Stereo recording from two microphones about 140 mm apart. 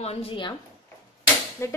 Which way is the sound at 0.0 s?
45° left (ahead or behind).